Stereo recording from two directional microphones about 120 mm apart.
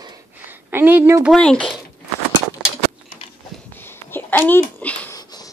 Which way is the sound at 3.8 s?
20° left (ahead or behind).